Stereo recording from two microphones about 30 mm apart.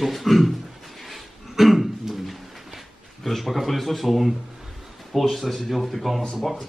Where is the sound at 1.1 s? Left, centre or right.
Centre.